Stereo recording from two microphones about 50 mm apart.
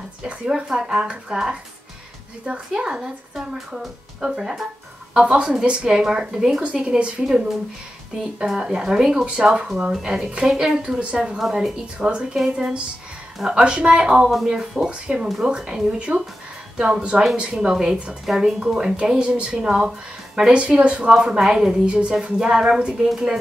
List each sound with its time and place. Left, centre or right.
0.5 s speech: centre
2.7 s speech: centre
8.5 s speech: centre
11.1 s speech: centre
11.8 s a woman's voice: centre
14.5 s speech: centre
14.9 s a woman's voice: centre
16.1 s speech: right
16.9 s a woman's voice: right
17.6 s a woman's voice: centre
21.2 s speech: centre